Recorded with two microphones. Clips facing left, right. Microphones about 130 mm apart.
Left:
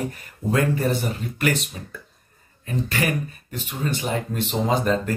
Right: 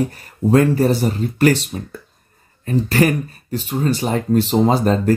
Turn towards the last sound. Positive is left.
turn(degrees=-35)  # may be behind; listen again after turning